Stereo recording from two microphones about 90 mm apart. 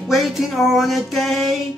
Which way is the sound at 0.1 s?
Centre (ahead or behind).